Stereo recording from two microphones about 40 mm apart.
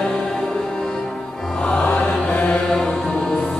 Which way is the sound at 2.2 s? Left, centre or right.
Left.